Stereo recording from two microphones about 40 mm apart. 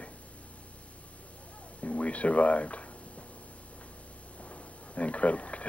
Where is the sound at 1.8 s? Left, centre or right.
Left.